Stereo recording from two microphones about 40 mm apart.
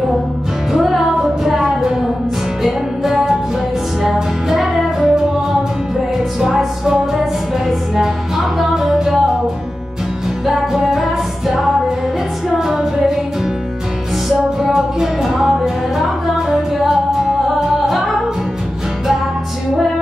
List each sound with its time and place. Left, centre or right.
0.7 s music: centre
6.4 s music: centre
10.4 s music: centre
14.6 s music: centre